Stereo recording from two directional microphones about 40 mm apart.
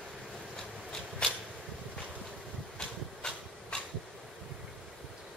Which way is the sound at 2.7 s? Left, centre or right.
Centre.